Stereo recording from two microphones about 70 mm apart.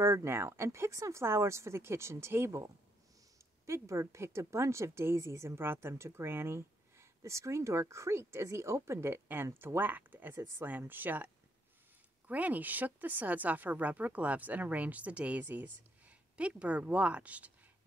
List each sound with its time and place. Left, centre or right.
0.0 s a woman's voice: right
12.3 s a woman's voice: right